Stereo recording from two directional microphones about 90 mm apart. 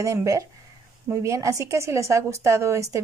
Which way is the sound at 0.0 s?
35° right (ahead or behind).